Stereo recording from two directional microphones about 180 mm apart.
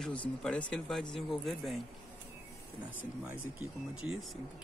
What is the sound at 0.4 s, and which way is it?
Speech, 5° left (ahead or behind).